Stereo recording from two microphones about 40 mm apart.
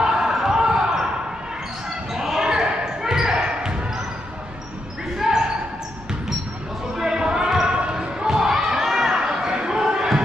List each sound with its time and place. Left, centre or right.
0.0 s basketball bounce: centre
2.1 s basketball bounce: centre
5.1 s basketball bounce: centre
7.0 s basketball bounce: centre
7.7 s basketball bounce: right
8.5 s crowd: centre
9.2 s basketball bounce: centre